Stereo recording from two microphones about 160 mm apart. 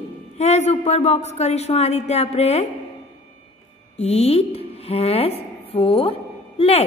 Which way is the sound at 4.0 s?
40° left (ahead or behind).